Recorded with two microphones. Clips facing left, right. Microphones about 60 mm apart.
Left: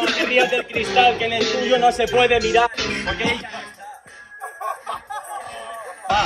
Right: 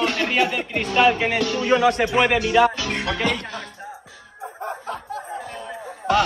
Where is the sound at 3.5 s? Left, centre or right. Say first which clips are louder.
Even; left.